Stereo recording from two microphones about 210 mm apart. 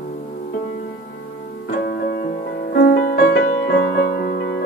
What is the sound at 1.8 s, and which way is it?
Music, 50° left (ahead or behind).